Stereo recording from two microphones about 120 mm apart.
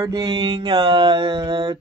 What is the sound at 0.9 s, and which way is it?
Speech, 50° right (ahead or behind).